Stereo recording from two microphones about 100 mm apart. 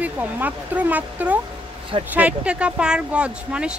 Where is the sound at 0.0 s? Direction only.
15° right (ahead or behind).